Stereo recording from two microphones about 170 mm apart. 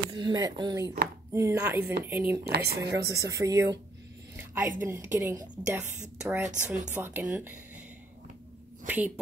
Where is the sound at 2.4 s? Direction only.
70° right (ahead or behind).